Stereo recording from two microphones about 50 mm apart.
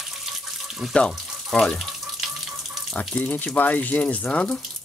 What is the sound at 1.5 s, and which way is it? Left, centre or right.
Speech, centre.